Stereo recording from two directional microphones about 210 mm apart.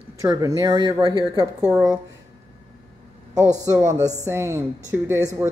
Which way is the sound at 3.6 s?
15° right (ahead or behind).